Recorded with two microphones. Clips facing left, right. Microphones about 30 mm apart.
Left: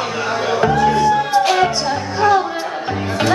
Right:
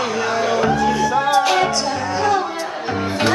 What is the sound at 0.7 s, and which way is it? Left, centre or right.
Music, left.